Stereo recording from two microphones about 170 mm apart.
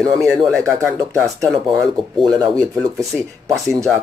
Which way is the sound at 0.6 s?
15° right (ahead or behind).